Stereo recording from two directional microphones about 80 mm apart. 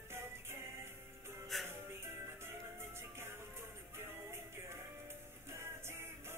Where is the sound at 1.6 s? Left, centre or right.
Right.